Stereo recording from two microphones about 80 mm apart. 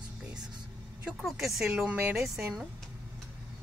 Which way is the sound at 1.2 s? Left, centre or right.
Centre.